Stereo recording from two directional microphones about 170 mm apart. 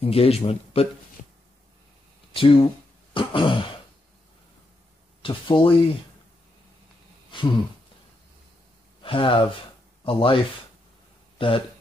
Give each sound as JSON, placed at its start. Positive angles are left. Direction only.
{"t": 0.0, "sound": "speech", "side_deg": 35}
{"t": 2.3, "sound": "speech", "side_deg": 30}
{"t": 5.2, "sound": "speech", "side_deg": 30}
{"t": 9.0, "sound": "speech", "side_deg": 30}